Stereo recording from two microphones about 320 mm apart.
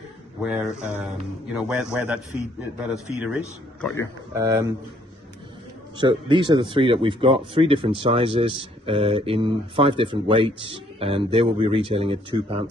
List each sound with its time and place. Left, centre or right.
0.4 s a man's voice: centre
5.9 s speech: centre